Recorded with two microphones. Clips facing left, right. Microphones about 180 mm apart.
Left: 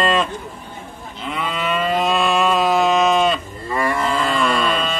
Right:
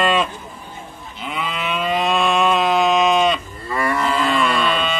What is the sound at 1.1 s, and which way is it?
Livestock, centre (ahead or behind).